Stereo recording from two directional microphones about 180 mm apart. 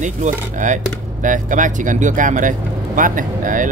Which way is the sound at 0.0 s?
45° right (ahead or behind).